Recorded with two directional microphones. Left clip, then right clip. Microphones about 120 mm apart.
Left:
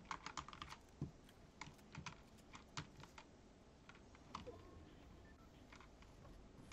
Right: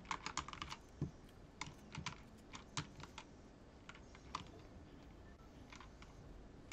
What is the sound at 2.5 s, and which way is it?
Clip-clop, 20° right (ahead or behind).